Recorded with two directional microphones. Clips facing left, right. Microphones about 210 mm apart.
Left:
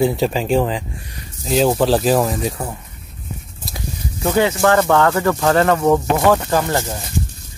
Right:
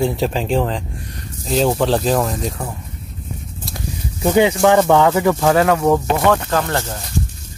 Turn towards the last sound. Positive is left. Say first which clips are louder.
# left 1 dB
turn(degrees=10)  # may be behind; listen again after turning